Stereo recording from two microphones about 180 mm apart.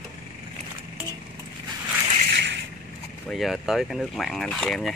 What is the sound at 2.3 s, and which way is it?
Crushing, 75° right (ahead or behind).